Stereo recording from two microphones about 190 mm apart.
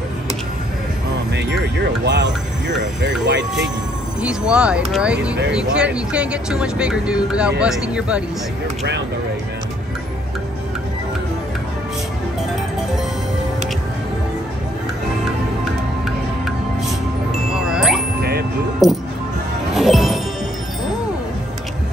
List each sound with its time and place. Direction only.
1.3 s speech: 65° right (ahead or behind)
4.2 s speech: 5° right (ahead or behind)
17.6 s music: 5° right (ahead or behind)
18.8 s speech: centre (ahead or behind)
19.7 s music: centre (ahead or behind)